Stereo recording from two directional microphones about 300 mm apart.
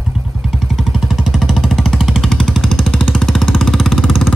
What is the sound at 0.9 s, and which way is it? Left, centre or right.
Vehicle, centre.